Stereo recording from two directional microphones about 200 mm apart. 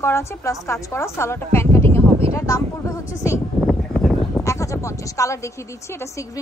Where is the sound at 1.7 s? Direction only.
10° left (ahead or behind).